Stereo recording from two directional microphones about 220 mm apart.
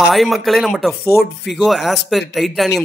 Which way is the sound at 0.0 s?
Centre (ahead or behind).